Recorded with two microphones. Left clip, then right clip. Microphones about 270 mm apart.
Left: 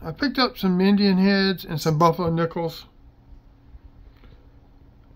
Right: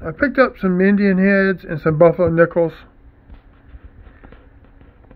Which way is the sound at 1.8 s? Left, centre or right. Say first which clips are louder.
Right 7 dB; centre.